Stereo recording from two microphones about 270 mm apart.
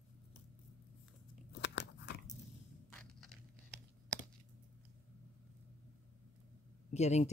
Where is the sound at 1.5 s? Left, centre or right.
Left.